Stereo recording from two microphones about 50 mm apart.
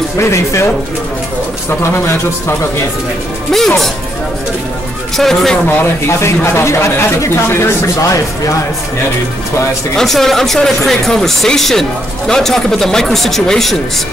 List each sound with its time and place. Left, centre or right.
0.2 s speech: left
1.8 s speech: left
3.5 s speech: centre
5.1 s speech: centre
6.0 s speech: left
9.9 s speech: centre